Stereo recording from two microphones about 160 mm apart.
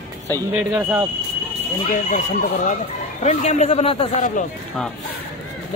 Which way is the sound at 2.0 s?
45° left (ahead or behind).